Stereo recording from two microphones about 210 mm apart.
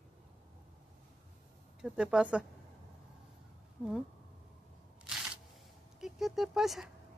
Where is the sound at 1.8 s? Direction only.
5° right (ahead or behind).